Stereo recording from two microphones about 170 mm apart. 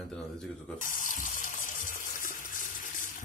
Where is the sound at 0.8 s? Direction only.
50° left (ahead or behind).